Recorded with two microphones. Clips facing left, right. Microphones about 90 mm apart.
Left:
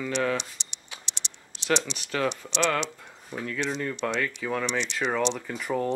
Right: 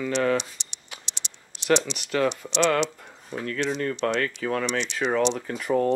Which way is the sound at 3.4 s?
15° left (ahead or behind).